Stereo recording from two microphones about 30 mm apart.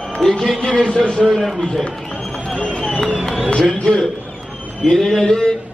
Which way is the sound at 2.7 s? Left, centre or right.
Left.